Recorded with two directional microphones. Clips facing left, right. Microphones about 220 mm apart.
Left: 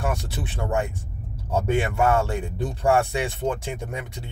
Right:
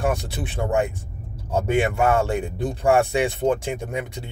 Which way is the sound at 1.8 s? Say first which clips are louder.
Right 3 dB; 20° right (ahead or behind).